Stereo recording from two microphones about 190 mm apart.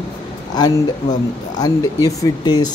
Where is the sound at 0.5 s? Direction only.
20° left (ahead or behind).